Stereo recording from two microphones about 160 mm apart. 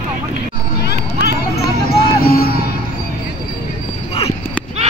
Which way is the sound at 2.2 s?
70° left (ahead or behind).